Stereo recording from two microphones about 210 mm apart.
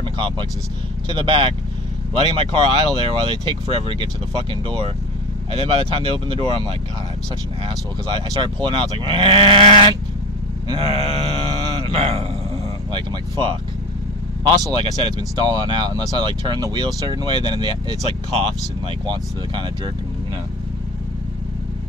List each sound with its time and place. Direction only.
0.0 s vehicle: 25° right (ahead or behind)
1.0 s speech: 25° right (ahead or behind)
11.8 s a sound: 25° right (ahead or behind)
14.5 s speech: 20° right (ahead or behind)